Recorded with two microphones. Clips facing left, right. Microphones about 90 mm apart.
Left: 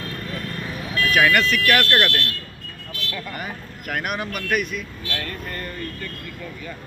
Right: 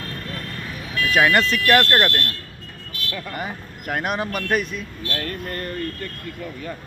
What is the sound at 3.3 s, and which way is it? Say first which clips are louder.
Speech: right 2 dB; 25° right (ahead or behind).